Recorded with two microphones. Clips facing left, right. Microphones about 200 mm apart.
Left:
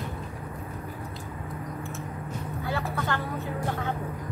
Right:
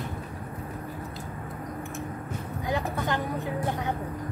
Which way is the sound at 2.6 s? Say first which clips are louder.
Right 2 dB; 15° right (ahead or behind).